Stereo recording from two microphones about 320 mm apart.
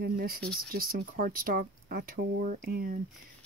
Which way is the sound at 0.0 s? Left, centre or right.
Right.